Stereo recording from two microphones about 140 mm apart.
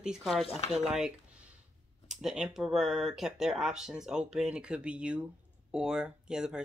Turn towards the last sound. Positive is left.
turn(degrees=-5)  # may be behind; listen again after turning